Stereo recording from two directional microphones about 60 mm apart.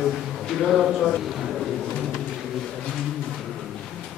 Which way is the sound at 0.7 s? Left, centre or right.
Centre.